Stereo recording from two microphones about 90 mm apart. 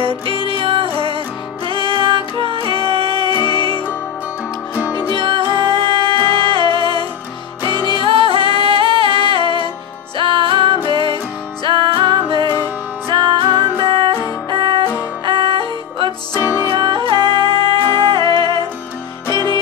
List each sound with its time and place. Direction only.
0.4 s music: 85° right
3.3 s music: 55° left (ahead or behind)
5.1 s music: 65° right (ahead or behind)
7.6 s music: 50° left (ahead or behind)
8.0 s music: 80° right
8.4 s music: 60° left (ahead or behind)
8.6 s music: 90° right
10.1 s music: 70° right (ahead or behind)
16.3 s music: 35° left (ahead or behind)
16.7 s music: 65° right (ahead or behind)
19.3 s music: 50° left (ahead or behind)